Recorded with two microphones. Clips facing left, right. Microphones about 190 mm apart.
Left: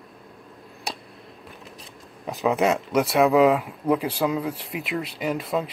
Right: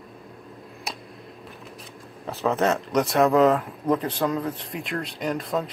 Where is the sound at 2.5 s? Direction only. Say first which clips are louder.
Left 1 dB; 10° left (ahead or behind).